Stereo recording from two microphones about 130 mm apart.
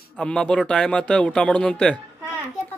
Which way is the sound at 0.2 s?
10° left (ahead or behind).